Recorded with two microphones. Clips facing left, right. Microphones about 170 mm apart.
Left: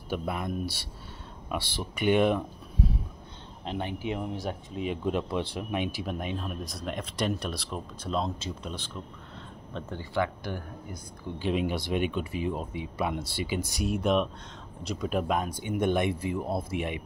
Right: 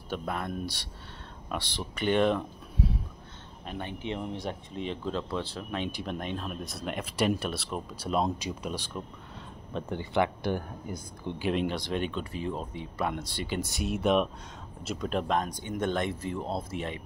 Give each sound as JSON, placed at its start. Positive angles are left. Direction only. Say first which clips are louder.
{"t": 0.1, "sound": "speech", "louder": "left 2 dB", "side_deg": 10}
{"t": 3.6, "sound": "speech", "louder": "left 4 dB", "side_deg": 20}
{"t": 4.0, "sound": "speech", "louder": "left 2 dB", "side_deg": 5}
{"t": 5.0, "sound": "speech", "louder": "left 5 dB", "side_deg": 15}
{"t": 11.5, "sound": "speech", "louder": "left 3 dB", "side_deg": 5}